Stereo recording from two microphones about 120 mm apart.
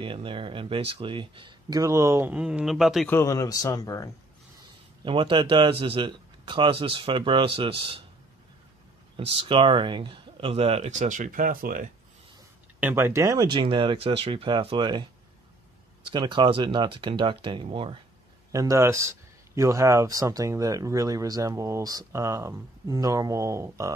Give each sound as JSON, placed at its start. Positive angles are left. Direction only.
{"t": 0.0, "sound": "speech", "side_deg": -45}
{"t": 1.8, "sound": "a man's voice", "side_deg": -25}
{"t": 2.3, "sound": "speech", "side_deg": -10}
{"t": 3.1, "sound": "speech", "side_deg": 25}
{"t": 5.0, "sound": "speech", "side_deg": -45}
{"t": 9.2, "sound": "speech", "side_deg": -50}
{"t": 12.8, "sound": "speech", "side_deg": -20}
{"t": 16.1, "sound": "speech", "side_deg": -40}
{"t": 18.5, "sound": "a man's voice", "side_deg": -30}